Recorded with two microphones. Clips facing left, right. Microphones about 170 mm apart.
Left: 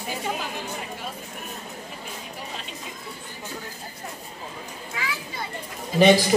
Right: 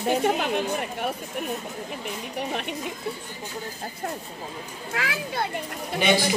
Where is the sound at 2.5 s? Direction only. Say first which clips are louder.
Right 7 dB; 65° right (ahead or behind).